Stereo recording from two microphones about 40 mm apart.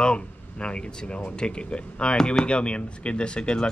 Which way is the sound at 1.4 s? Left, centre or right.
Left.